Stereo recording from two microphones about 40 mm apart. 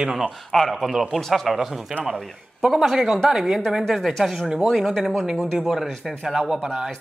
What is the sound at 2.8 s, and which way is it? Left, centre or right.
Speech, centre.